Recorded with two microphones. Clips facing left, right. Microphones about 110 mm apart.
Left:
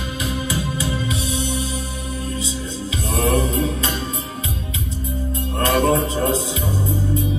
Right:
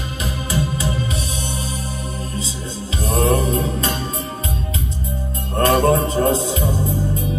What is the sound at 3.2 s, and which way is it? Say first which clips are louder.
Music: right 1 dB; 35° right (ahead or behind).